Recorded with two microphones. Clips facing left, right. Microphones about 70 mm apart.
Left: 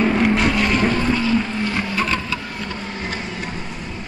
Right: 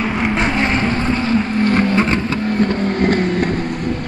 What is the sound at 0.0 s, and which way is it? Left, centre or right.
Boat, right.